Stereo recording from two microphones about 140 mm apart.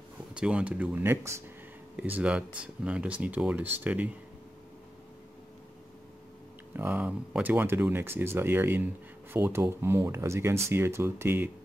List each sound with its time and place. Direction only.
0.3 s speech: 5° right (ahead or behind)
6.7 s speech: 15° right (ahead or behind)